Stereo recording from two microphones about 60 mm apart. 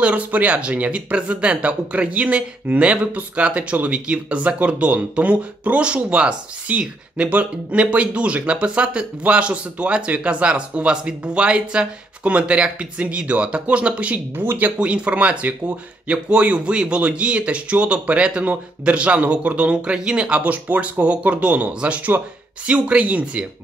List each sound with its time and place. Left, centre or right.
0.0 s speech: right
14.3 s speech: right
14.6 s speech: centre